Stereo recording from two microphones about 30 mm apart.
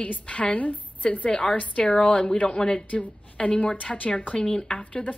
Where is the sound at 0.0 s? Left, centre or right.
Left.